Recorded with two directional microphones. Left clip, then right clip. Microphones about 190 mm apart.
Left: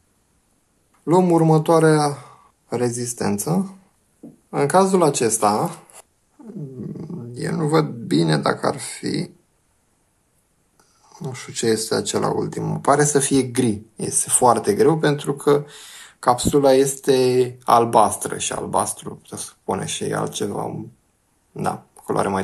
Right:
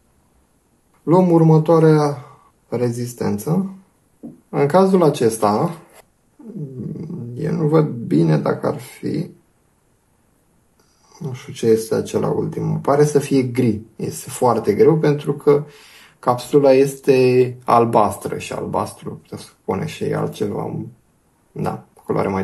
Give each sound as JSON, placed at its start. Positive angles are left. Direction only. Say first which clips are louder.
{"t": 1.0, "sound": "speech", "louder": "right 2 dB", "side_deg": 20}
{"t": 4.5, "sound": "speech", "louder": "right 2 dB", "side_deg": 10}
{"t": 6.8, "sound": "dog", "louder": "right 2 dB", "side_deg": 5}
{"t": 7.5, "sound": "speech", "louder": "right 3 dB", "side_deg": 15}
{"t": 11.1, "sound": "speech", "louder": "even", "side_deg": 20}